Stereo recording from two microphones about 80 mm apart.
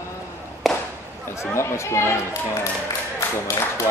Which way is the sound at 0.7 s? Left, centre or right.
Centre.